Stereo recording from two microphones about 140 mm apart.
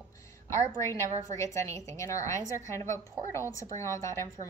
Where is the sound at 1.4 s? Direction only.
20° left (ahead or behind).